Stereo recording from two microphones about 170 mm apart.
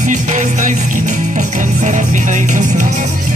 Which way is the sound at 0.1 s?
45° right (ahead or behind).